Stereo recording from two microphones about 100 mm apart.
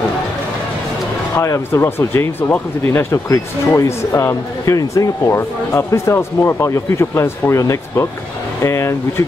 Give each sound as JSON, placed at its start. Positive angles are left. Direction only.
{"t": 1.4, "sound": "speech", "side_deg": 30}